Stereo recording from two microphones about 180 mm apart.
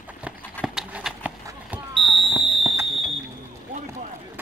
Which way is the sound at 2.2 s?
10° right (ahead or behind).